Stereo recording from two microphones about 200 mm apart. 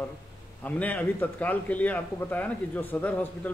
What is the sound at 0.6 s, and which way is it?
Speech, 10° left (ahead or behind).